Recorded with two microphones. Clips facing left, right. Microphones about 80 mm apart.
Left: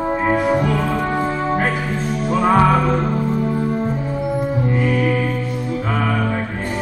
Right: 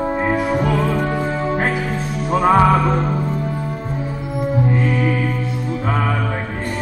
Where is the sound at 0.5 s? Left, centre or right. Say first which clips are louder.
Even; centre.